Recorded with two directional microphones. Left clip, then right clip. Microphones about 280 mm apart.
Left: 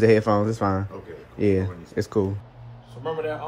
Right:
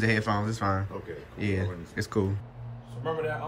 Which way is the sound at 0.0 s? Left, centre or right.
Left.